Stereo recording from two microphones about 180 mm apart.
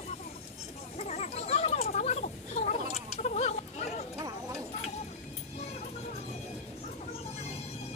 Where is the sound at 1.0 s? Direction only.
35° left (ahead or behind).